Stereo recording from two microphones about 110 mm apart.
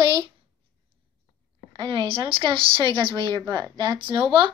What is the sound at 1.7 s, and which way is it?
Speech, 45° right (ahead or behind).